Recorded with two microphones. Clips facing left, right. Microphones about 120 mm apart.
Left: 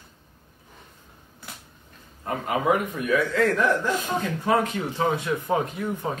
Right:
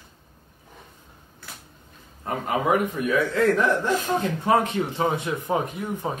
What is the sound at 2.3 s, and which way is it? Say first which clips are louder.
A man's voice: even; 25° right (ahead or behind).